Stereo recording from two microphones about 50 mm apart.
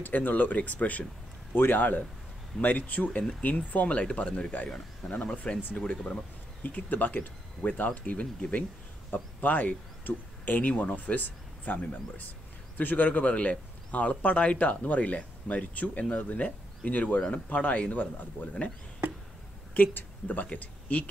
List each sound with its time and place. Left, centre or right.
0.0 s speech: left
1.5 s speech: left
19.7 s speech: left